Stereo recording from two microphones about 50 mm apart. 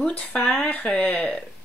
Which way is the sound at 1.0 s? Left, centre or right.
Left.